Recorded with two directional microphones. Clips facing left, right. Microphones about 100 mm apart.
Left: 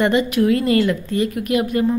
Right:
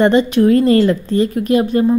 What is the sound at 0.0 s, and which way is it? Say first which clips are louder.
A woman's voice: right 5 dB; 30° right (ahead or behind).